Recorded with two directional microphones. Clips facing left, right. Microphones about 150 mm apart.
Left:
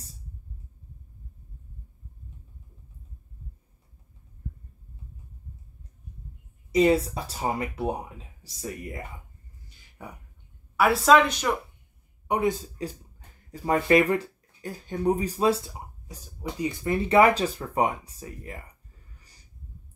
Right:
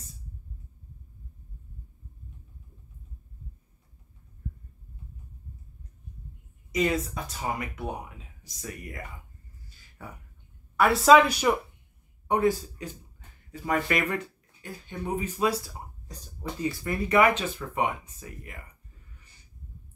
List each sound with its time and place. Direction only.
6.7 s speech: 30° left (ahead or behind)
10.0 s speech: 15° left (ahead or behind)
10.8 s a woman's voice: centre (ahead or behind)
12.3 s speech: 20° left (ahead or behind)
12.8 s speech: 35° left (ahead or behind)
16.1 s speech: 10° left (ahead or behind); by 18.6 s 35° left (ahead or behind)